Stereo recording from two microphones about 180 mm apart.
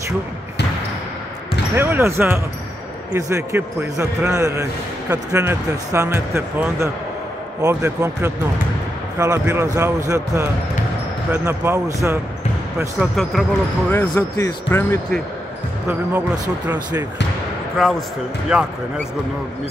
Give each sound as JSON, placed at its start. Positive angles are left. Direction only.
{"t": 1.8, "sound": "speech", "side_deg": -15}
{"t": 12.7, "sound": "speech", "side_deg": 0}
{"t": 14.1, "sound": "speech", "side_deg": 20}
{"t": 15.9, "sound": "speech", "side_deg": -10}
{"t": 17.8, "sound": "speech", "side_deg": 0}